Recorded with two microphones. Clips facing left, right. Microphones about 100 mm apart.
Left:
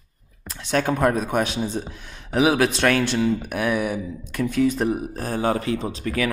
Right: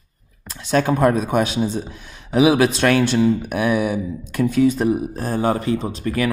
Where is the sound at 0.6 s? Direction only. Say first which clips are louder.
Right 4 dB; 35° right (ahead or behind).